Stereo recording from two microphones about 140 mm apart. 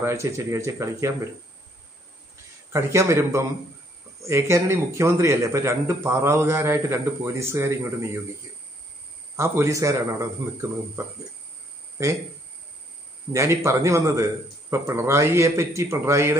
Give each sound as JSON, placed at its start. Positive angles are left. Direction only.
{"t": 0.0, "sound": "a man's voice", "side_deg": -20}
{"t": 2.7, "sound": "a man's voice", "side_deg": -20}
{"t": 9.4, "sound": "a man's voice", "side_deg": -20}
{"t": 13.3, "sound": "a man's voice", "side_deg": -20}